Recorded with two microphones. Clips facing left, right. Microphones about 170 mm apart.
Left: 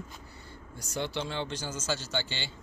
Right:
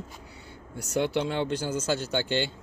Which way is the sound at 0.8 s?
60° right (ahead or behind).